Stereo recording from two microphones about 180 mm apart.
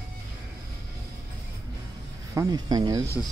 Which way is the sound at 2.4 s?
20° right (ahead or behind).